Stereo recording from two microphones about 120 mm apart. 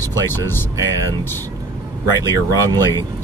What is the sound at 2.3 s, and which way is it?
Speech, 30° right (ahead or behind).